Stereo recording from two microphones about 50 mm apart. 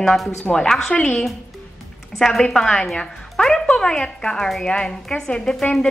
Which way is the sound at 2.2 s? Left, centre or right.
Centre.